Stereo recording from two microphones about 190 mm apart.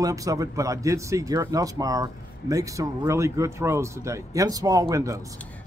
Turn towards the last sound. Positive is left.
turn(degrees=-15)  # may be behind; listen again after turning